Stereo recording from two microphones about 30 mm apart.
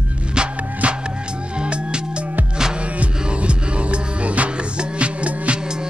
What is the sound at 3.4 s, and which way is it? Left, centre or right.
Music, right.